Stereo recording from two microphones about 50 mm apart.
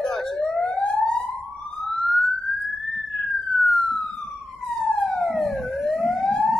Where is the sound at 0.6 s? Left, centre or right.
Left; by 2.3 s centre.